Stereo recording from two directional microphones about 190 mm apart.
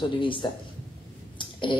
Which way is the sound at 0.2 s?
25° left (ahead or behind).